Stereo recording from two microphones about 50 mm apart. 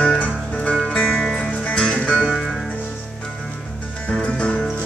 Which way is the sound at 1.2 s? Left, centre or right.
Centre.